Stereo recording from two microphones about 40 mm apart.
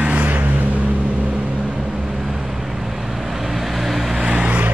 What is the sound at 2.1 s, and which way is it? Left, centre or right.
Vehicle, centre.